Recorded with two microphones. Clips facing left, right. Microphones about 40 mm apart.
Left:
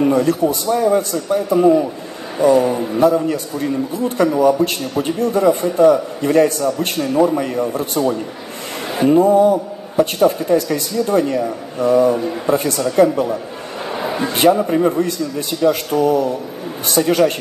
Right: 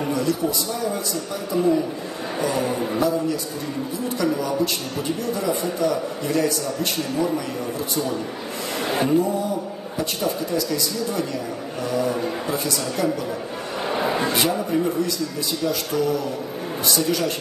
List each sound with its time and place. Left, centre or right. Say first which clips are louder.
0.1 s speech: left 7 dB; left
4.4 s speech: left 9 dB; left
13.8 s a sound: left 1 dB; centre
14.3 s speech: left 8 dB; left